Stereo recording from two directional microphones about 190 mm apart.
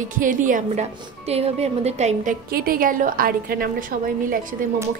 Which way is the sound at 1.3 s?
30° right (ahead or behind).